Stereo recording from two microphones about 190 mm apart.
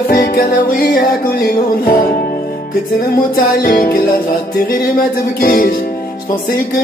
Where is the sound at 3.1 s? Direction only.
50° left (ahead or behind).